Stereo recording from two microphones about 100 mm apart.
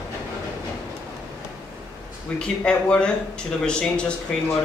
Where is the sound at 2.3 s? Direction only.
10° left (ahead or behind).